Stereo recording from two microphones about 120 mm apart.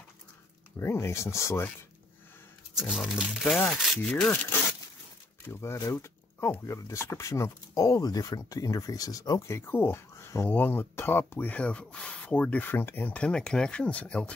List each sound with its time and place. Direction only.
0.7 s speech: 20° left (ahead or behind)
2.7 s speech: 5° right (ahead or behind)
4.1 s speech: 10° left (ahead or behind); by 9.6 s 30° left (ahead or behind)
9.6 s speech: 20° left (ahead or behind)